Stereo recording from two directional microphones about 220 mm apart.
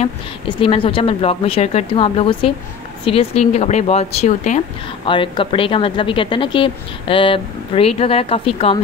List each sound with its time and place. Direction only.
0.0 s a woman's voice: 25° left (ahead or behind)